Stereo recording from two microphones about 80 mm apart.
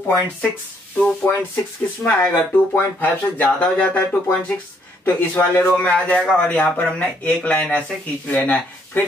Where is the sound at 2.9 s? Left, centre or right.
Centre.